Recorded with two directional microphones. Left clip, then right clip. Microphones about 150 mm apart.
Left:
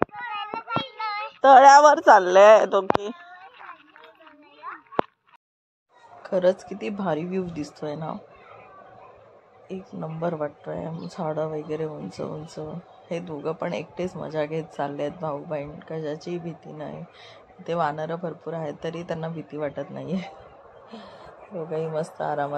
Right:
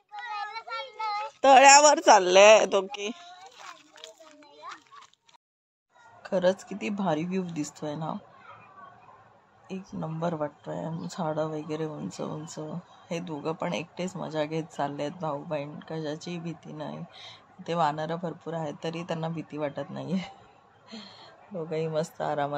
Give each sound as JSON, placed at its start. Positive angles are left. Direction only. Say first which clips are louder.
{"t": 0.2, "sound": "a sound", "louder": "left 4 dB", "side_deg": -30}
{"t": 1.6, "sound": "speech", "louder": "left 4 dB", "side_deg": -30}
{"t": 2.0, "sound": "a woman's voice", "louder": "left 3 dB", "side_deg": -5}
{"t": 6.2, "sound": "speech", "louder": "left 4 dB", "side_deg": 10}
{"t": 9.7, "sound": "speech", "louder": "left 3 dB", "side_deg": 5}